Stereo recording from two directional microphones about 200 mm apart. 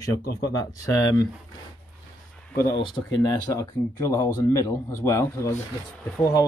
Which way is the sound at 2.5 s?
10° left (ahead or behind).